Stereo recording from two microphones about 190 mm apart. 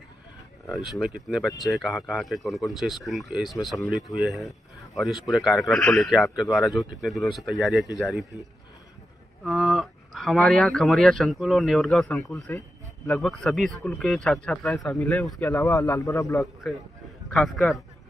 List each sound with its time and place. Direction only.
0.7 s speech: centre (ahead or behind)
9.4 s a man's voice: centre (ahead or behind); by 16.4 s 15° left (ahead or behind)
16.6 s speech: centre (ahead or behind)